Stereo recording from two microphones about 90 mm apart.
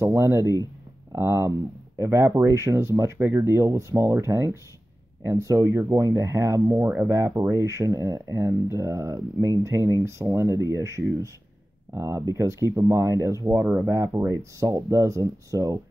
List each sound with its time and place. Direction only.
0.0 s speech: 30° right (ahead or behind)